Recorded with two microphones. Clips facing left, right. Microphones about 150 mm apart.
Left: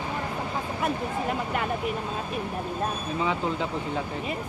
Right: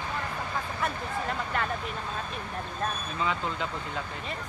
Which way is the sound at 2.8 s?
20° left (ahead or behind).